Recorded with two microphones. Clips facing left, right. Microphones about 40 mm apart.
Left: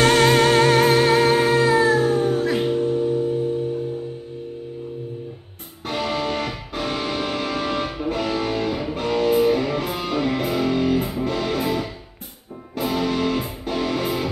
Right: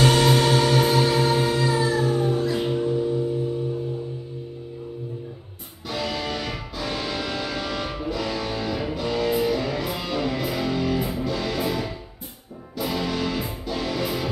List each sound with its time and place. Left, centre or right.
0.0 s music: left
5.9 s music: left